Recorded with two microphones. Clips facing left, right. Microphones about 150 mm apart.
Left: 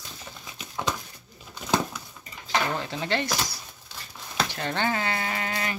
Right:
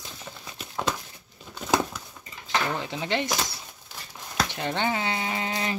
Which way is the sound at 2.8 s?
15° right (ahead or behind).